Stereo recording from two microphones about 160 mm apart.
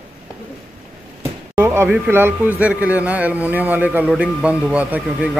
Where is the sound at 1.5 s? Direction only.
15° right (ahead or behind).